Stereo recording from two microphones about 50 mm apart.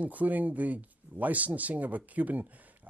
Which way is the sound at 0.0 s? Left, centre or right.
Right.